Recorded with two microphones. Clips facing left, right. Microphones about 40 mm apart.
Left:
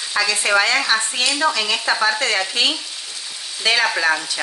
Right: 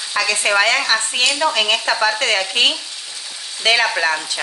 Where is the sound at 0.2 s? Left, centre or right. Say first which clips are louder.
Right 1 dB; right.